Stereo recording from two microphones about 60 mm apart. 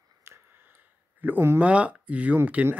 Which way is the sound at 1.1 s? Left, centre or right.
Right.